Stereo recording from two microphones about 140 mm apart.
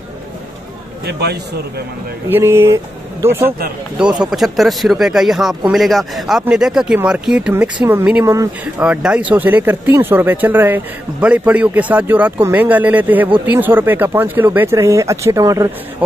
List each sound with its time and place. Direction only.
2.2 s speech: 15° right (ahead or behind)
4.0 s speech: 5° right (ahead or behind); by 15.7 s 25° right (ahead or behind)